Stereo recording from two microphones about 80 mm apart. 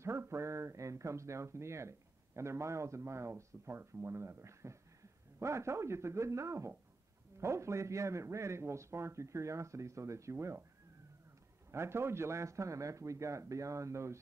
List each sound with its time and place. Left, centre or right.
0.0 s a man's voice: right
11.7 s a man's voice: right